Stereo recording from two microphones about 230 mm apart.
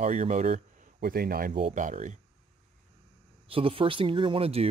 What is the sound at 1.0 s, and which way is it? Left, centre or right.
Speech, right.